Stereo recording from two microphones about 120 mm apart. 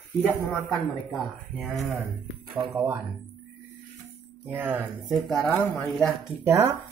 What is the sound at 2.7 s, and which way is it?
Speech, 20° right (ahead or behind).